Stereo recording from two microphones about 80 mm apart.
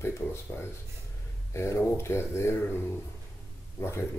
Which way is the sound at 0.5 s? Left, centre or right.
Left.